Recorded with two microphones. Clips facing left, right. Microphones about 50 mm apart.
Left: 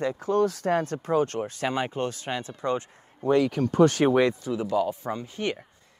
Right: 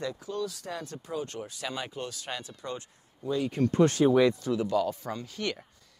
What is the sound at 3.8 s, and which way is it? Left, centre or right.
Speech, left.